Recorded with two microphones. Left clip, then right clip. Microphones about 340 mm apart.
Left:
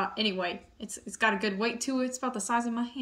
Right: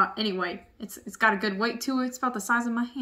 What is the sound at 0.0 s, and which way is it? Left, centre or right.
Speech, centre.